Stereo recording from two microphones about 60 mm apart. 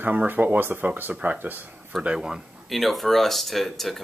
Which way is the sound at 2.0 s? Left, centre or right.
Centre.